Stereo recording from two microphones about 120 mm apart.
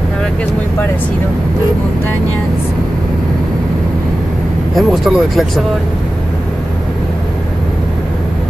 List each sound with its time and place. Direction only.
4.7 s speech: centre (ahead or behind)